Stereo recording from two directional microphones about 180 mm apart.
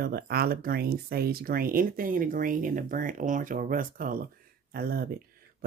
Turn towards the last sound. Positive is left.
turn(degrees=-55)  # may be behind; listen again after turning